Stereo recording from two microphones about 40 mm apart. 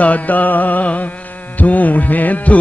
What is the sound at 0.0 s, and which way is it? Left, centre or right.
Music, left.